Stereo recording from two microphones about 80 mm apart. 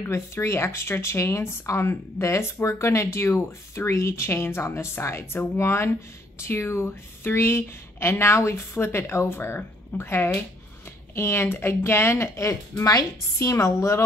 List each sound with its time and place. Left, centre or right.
0.0 s speech: left